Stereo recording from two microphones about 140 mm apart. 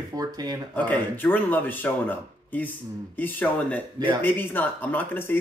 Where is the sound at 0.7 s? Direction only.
15° left (ahead or behind).